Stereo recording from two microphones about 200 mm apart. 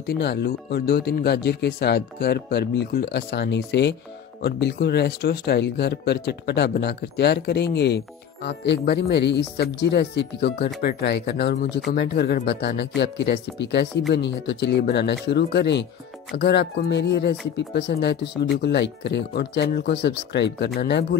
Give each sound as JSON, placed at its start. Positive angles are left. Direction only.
{"t": 0.0, "sound": "speech", "side_deg": 55}